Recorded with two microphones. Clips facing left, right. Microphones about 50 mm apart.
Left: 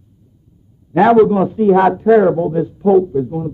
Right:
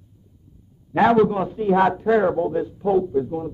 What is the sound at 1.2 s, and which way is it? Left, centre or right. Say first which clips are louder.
A man's voice: left 8 dB; centre.